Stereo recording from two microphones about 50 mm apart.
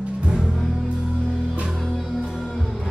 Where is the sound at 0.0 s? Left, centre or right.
Right.